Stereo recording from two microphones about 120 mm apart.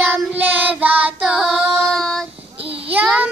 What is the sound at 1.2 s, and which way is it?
Female singing, centre (ahead or behind).